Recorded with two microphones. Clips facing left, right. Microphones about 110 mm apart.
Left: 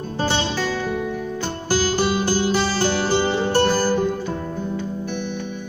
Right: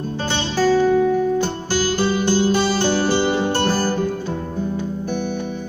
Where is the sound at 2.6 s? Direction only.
25° right (ahead or behind).